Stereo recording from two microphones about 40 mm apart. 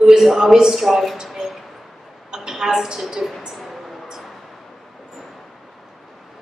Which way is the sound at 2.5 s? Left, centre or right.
Centre.